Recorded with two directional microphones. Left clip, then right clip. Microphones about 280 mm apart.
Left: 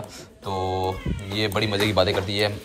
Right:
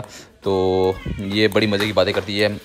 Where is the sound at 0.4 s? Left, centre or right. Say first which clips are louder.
Right 8 dB; right.